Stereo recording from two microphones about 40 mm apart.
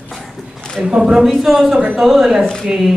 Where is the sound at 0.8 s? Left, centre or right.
Centre.